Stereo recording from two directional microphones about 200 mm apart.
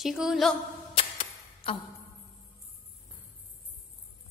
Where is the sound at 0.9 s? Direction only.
25° left (ahead or behind).